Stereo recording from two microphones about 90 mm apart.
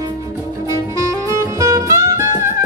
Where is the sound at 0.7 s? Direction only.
40° right (ahead or behind).